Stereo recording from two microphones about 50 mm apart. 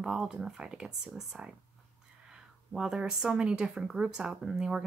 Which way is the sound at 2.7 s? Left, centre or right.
Centre.